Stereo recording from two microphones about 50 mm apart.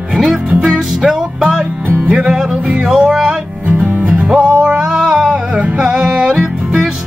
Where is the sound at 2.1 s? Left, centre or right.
Centre.